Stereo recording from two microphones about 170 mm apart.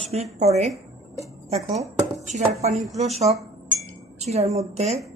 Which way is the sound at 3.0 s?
40° right (ahead or behind).